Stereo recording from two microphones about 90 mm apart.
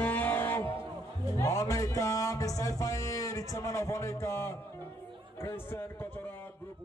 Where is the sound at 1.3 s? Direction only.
35° left (ahead or behind).